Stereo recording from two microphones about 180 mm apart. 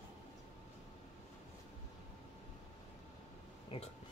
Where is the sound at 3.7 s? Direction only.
30° left (ahead or behind).